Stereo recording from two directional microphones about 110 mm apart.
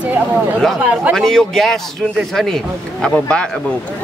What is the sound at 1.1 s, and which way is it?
A man's voice, 5° left (ahead or behind).